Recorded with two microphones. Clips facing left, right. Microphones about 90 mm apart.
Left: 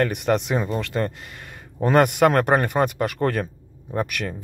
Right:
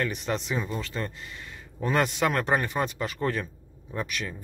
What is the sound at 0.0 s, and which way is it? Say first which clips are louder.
Speech: left 8 dB; 60° left (ahead or behind).